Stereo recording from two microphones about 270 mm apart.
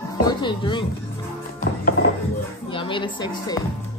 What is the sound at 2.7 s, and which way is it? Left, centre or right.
Speech, centre.